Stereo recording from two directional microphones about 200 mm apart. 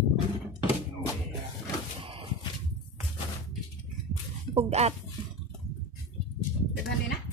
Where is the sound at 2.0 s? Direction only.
25° right (ahead or behind).